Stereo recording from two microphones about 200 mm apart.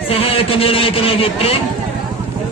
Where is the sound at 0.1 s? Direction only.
30° left (ahead or behind).